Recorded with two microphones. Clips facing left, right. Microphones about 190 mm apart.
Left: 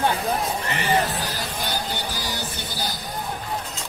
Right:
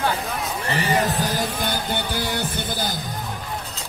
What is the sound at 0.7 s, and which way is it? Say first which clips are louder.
Speech: right 3 dB; 45° right (ahead or behind).